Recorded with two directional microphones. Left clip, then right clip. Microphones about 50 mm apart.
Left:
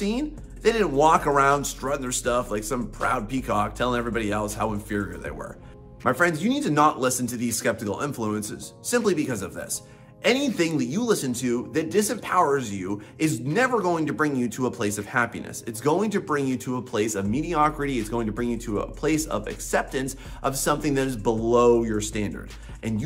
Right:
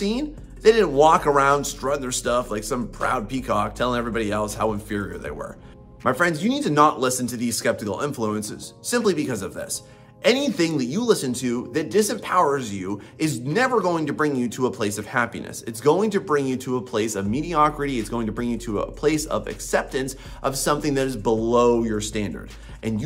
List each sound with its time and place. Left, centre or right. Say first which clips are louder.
0.0 s speech: right 2 dB; right